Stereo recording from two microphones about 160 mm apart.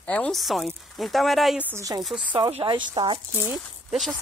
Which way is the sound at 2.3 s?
30° right (ahead or behind).